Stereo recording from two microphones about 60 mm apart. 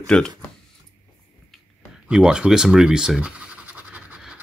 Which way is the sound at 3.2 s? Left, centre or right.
Right.